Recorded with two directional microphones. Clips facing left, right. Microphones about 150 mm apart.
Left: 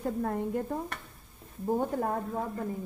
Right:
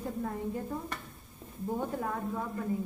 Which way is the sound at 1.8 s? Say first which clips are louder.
Left 2 dB; 40° left (ahead or behind).